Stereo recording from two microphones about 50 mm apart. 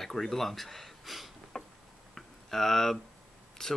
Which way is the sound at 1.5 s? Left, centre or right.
Centre.